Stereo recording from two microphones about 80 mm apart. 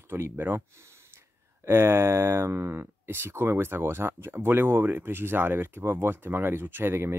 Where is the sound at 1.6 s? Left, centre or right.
Right.